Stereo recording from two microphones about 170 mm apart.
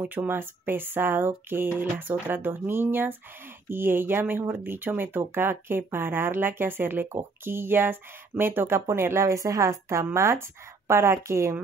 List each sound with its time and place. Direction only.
0.0 s speech: 10° right (ahead or behind)